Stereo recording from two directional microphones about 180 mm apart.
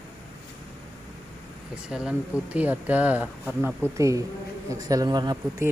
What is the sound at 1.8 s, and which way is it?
Speech, 5° right (ahead or behind).